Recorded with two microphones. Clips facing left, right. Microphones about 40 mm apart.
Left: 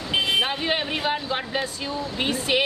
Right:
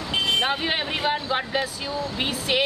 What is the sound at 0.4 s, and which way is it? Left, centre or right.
Speech, centre.